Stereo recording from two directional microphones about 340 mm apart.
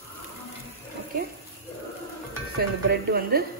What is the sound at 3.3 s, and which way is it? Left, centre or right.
Speech, right.